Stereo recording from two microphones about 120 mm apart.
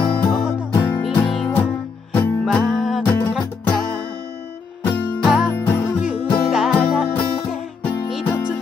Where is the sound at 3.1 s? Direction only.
15° left (ahead or behind).